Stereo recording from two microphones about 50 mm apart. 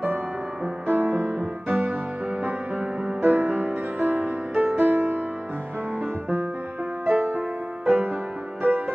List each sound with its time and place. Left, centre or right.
0.8 s music: right
7.1 s music: right